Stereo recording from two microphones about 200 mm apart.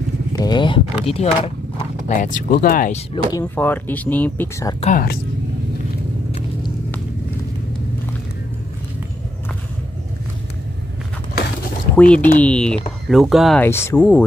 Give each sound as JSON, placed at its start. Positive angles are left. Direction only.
{"t": 0.4, "sound": "speech", "side_deg": 20}
{"t": 2.1, "sound": "speech", "side_deg": 40}
{"t": 3.3, "sound": "speech", "side_deg": 15}
{"t": 4.8, "sound": "speech", "side_deg": 45}
{"t": 11.9, "sound": "speech", "side_deg": 5}